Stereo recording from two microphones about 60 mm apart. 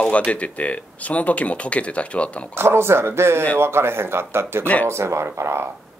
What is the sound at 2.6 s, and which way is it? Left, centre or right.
Speech, right.